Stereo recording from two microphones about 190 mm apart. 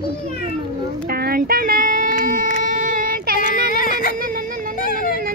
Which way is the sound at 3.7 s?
45° left (ahead or behind).